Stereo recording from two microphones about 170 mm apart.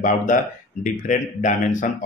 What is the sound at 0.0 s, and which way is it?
Speech, 50° left (ahead or behind).